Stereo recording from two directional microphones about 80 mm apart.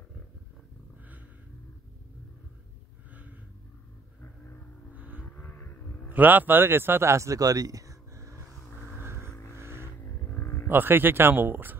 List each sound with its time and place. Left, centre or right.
4.9 s vehicle: centre
5.2 s vehicle: left
6.0 s speech: right
9.0 s vehicle: right
10.0 s a sound: left
10.7 s speech: right